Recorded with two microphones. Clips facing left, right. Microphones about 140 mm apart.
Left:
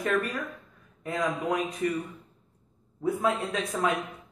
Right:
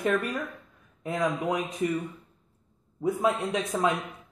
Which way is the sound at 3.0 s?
20° right (ahead or behind).